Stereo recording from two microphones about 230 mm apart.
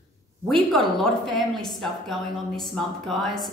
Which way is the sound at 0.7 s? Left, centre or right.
Centre.